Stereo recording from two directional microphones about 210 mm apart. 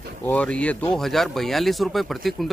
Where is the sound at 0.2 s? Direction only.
5° left (ahead or behind).